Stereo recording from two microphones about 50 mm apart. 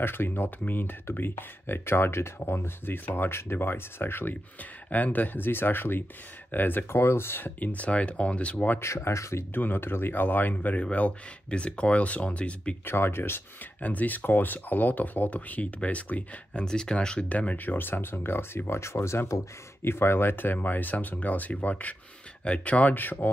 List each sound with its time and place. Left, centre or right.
0.0 s speech: left
4.8 s speech: left
6.9 s speech: left
8.7 s speech: left
9.5 s speech: left
12.8 s speech: left
13.7 s speech: left
16.6 s speech: centre
17.6 s speech: left
18.7 s speech: left
19.8 s speech: left